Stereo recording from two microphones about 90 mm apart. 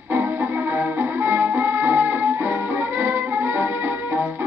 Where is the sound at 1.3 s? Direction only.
25° right (ahead or behind).